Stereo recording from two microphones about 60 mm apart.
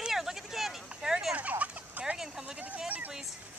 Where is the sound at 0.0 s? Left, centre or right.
Centre.